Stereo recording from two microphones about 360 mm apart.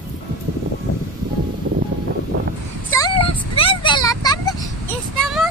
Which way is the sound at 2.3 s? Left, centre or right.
Right.